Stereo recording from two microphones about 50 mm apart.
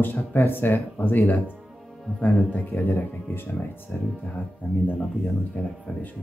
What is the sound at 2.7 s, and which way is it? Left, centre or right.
Speech, left.